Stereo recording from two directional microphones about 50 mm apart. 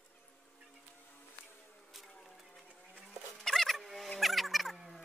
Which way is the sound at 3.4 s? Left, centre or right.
Centre.